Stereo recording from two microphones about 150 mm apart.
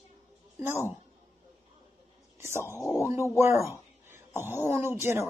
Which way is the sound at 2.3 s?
15° right (ahead or behind).